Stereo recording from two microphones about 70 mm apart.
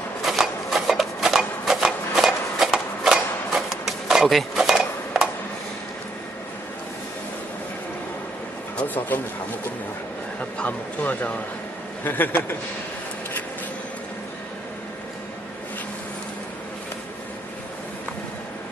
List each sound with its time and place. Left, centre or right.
0.2 s a sound: centre
8.7 s speech: left
10.6 s speech: left